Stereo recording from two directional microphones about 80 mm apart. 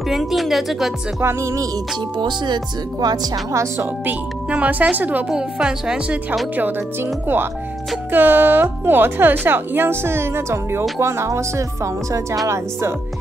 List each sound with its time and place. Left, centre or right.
0.1 s a woman's voice: centre
1.2 s music: right
2.1 s speech: right
3.5 s music: right
4.0 s a woman's voice: centre
5.3 s speech: centre
6.5 s a woman's voice: right